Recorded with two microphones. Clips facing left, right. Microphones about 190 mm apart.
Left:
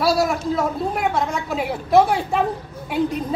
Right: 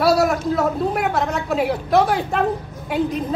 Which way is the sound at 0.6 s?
Centre (ahead or behind).